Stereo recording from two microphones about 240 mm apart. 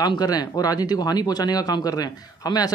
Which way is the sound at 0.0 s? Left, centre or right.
Centre.